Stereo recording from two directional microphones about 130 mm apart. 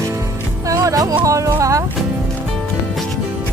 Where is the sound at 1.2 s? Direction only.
25° right (ahead or behind).